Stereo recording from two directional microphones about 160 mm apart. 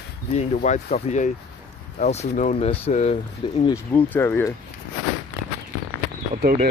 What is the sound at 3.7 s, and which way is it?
Speech, 15° left (ahead or behind).